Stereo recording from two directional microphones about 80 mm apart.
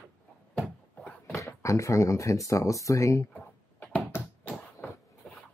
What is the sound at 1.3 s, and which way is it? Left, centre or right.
Speech, left.